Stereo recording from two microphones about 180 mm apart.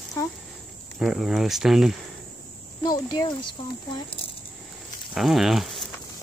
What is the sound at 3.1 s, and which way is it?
Speech, 25° left (ahead or behind).